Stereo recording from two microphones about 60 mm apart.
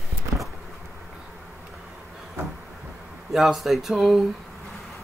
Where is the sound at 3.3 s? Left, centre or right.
Centre.